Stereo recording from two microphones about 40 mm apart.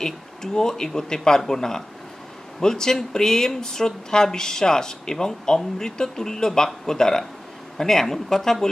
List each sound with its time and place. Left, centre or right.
0.0 s speech: centre